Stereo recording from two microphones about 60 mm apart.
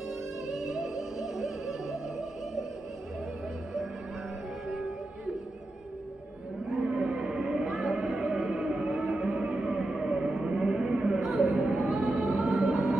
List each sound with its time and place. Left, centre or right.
0.5 s music: centre
4.6 s music: centre
6.7 s a sound: centre